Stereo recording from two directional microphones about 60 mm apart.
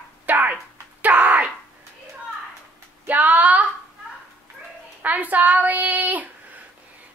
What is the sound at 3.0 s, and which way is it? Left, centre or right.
Speech, right.